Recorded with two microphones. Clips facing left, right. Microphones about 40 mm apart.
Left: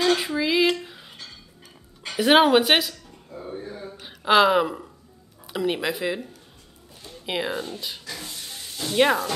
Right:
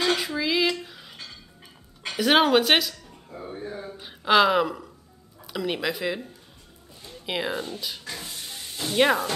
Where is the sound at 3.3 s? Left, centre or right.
Centre.